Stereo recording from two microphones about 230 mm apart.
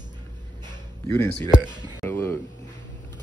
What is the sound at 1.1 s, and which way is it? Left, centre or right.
Speech, centre.